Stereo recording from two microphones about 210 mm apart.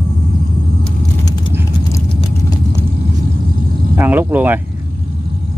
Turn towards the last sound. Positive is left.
turn(degrees=-10)  # may be behind; listen again after turning